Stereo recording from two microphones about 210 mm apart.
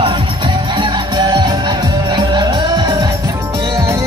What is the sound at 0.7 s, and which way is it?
Music, 20° right (ahead or behind).